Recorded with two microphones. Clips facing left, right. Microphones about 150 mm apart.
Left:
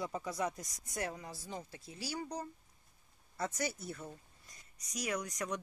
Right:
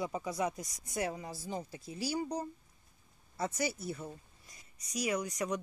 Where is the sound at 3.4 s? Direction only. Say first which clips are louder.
Right 3 dB; 5° right (ahead or behind).